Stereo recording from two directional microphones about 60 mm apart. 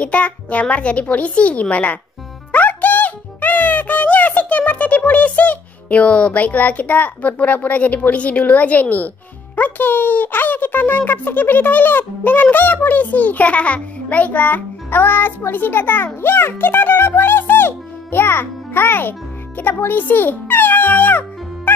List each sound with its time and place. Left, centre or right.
0.0 s a child's voice: left
2.5 s music: left
9.6 s a child's voice: left